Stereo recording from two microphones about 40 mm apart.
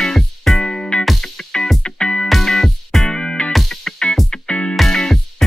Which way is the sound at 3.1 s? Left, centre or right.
Left.